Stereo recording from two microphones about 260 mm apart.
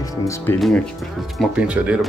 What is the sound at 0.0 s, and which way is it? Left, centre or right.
Speech, centre.